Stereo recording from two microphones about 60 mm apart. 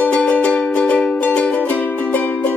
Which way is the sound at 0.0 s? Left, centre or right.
Left.